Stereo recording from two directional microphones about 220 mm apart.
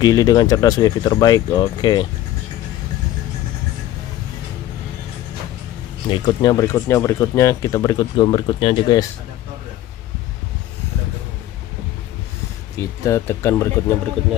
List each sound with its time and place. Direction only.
0.0 s speech: 15° left (ahead or behind)
6.0 s speech: 20° left (ahead or behind)
12.7 s speech: 15° left (ahead or behind)